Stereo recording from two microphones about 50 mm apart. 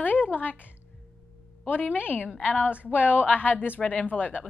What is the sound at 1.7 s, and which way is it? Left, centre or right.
Speech, left.